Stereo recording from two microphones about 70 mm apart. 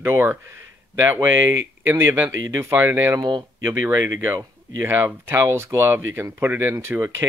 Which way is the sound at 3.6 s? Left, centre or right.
Right.